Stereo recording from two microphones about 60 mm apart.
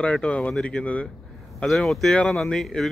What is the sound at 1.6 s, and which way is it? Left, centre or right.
A man's voice, centre.